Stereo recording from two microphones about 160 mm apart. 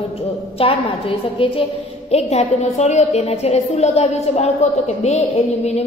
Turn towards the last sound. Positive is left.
turn(degrees=40)  # may be behind; listen again after turning